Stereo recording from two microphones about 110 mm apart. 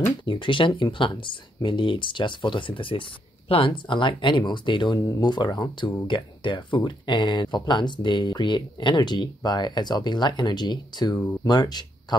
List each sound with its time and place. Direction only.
0.2 s speech: 50° left (ahead or behind)